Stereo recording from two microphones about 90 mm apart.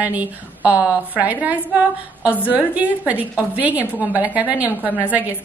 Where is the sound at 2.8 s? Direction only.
15° right (ahead or behind).